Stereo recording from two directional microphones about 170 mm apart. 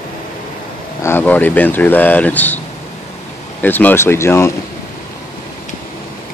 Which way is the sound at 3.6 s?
10° left (ahead or behind).